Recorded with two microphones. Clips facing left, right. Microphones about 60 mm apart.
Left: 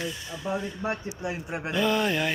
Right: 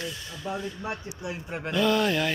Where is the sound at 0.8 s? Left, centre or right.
Left.